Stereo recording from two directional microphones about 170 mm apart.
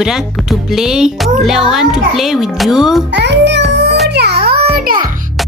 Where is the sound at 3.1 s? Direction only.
90° right.